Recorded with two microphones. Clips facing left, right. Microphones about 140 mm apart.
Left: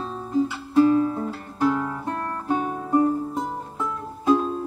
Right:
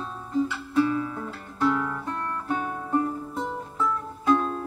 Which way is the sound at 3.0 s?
35° left (ahead or behind).